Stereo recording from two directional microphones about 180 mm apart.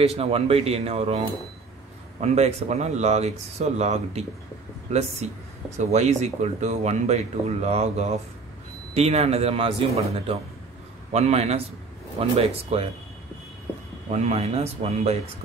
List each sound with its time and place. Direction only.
0.0 s speech: 35° right (ahead or behind)
14.1 s speech: 35° right (ahead or behind)